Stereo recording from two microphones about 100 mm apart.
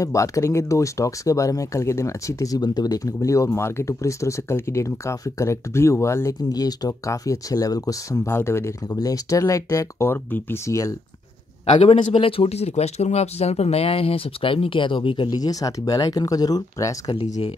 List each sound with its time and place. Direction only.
0.0 s speech: 35° left (ahead or behind)
6.5 s speech: 40° left (ahead or behind); by 10.6 s 20° left (ahead or behind)
10.7 s speech: 35° left (ahead or behind)
11.8 s speech: 85° left; by 15.2 s 55° left (ahead or behind)
15.2 s speech: 40° left (ahead or behind)